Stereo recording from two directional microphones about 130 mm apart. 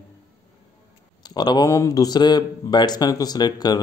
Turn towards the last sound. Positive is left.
turn(degrees=30)  # may be behind; listen again after turning